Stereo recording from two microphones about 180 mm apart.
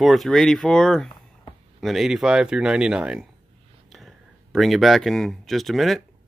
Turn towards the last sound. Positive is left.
turn(degrees=0)  # may be behind; listen again after turning